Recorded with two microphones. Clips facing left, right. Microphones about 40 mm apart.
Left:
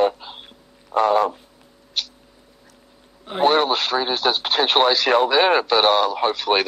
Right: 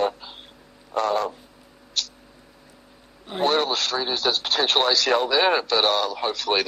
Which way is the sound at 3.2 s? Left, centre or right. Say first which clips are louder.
Left 5 dB; left.